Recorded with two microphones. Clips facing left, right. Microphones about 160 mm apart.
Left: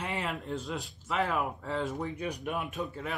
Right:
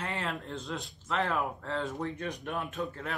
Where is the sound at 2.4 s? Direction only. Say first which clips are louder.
Right 1 dB; 15° left (ahead or behind).